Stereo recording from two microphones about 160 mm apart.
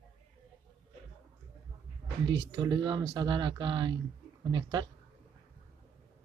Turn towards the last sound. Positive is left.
turn(degrees=-25)  # may be behind; listen again after turning